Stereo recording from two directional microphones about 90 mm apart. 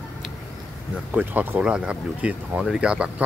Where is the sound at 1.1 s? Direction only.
15° right (ahead or behind).